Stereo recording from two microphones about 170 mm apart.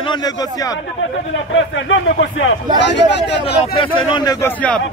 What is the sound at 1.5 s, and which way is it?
Speech, 90° left.